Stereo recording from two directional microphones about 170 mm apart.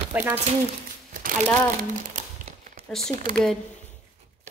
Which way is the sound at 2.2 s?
45° right (ahead or behind).